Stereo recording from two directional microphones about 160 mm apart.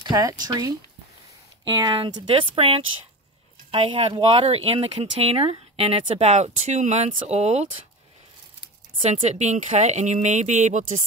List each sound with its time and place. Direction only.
0.0 s speech: 25° right (ahead or behind); by 7.6 s 40° right (ahead or behind)
9.0 s speech: 45° right (ahead or behind)